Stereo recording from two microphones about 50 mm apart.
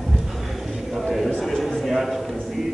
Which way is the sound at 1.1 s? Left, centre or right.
Centre.